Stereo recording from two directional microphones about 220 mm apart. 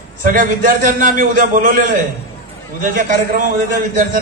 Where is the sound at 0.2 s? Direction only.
40° right (ahead or behind).